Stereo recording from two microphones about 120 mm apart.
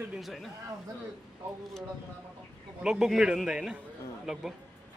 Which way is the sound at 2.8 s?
5° right (ahead or behind).